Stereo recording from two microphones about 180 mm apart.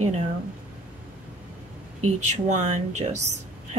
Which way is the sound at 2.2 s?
40° right (ahead or behind).